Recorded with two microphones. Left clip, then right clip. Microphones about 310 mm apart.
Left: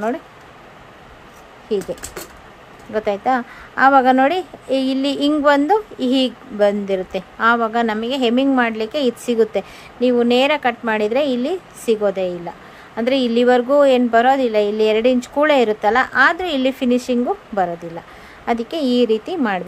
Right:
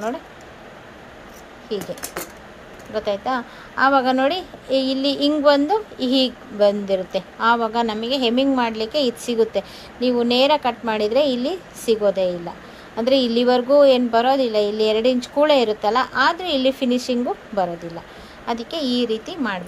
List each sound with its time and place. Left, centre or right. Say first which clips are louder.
1.7 s a woman's voice: left 6 dB; centre
2.9 s a woman's voice: left 4 dB; centre